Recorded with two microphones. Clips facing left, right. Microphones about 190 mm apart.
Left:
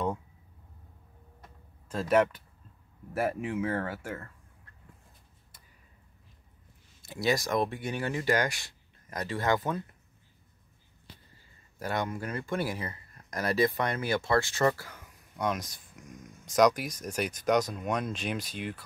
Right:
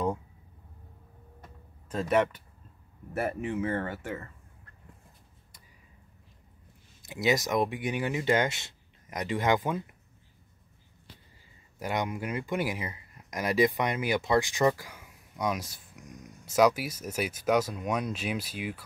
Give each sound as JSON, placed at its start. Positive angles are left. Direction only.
{"t": 2.0, "sound": "speech", "side_deg": 5}
{"t": 7.0, "sound": "speech", "side_deg": -20}
{"t": 11.8, "sound": "speech", "side_deg": -15}